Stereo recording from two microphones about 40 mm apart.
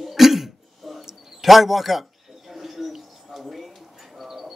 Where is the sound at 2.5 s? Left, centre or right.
Centre.